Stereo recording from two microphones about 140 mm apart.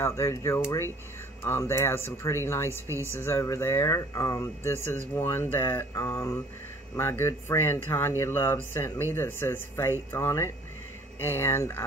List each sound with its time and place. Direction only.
0.0 s speech: 20° left (ahead or behind)